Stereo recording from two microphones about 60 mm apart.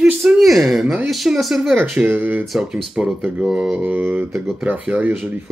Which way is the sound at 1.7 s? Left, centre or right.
Right.